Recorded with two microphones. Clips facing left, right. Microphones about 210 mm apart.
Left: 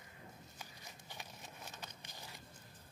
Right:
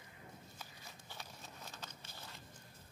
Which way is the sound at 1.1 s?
15° left (ahead or behind).